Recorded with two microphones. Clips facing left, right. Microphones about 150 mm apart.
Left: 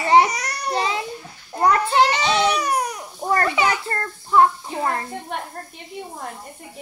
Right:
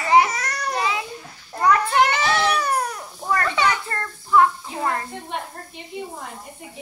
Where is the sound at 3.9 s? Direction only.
35° left (ahead or behind).